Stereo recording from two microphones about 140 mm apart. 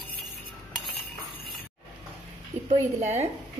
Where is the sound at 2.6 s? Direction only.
55° right (ahead or behind).